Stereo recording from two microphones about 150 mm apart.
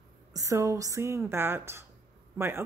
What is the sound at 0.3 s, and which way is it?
A woman's voice, 20° right (ahead or behind).